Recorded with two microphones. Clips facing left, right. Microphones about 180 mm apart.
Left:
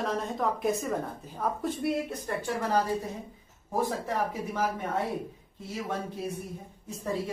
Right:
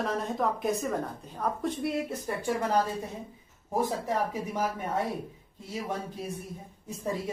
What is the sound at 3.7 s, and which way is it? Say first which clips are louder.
Speech: right 1 dB; 15° right (ahead or behind).